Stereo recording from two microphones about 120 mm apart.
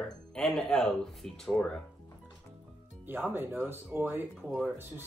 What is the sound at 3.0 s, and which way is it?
Speech, 15° right (ahead or behind).